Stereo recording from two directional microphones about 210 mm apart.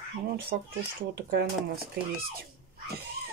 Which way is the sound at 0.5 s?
45° right (ahead or behind).